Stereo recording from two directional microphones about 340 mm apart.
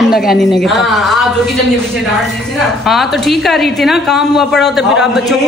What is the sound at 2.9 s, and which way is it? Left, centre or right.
A woman's voice, centre.